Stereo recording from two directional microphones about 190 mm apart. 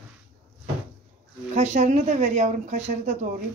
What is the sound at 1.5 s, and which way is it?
A woman's voice, 40° right (ahead or behind).